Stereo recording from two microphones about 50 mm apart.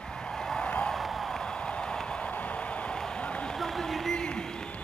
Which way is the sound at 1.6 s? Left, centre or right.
Centre.